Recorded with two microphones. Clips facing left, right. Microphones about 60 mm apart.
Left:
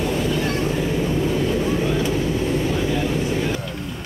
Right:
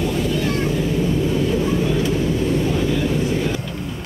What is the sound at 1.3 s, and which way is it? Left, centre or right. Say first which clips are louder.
Vehicle: right 1 dB; left.